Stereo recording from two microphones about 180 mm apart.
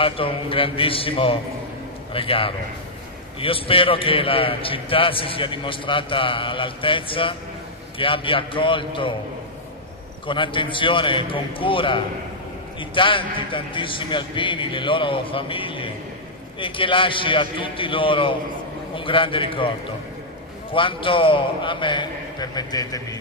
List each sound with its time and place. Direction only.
0.0 s a man's voice: 30° left (ahead or behind)
10.2 s a man's voice: 30° left (ahead or behind)
20.7 s a man's voice: 30° left (ahead or behind)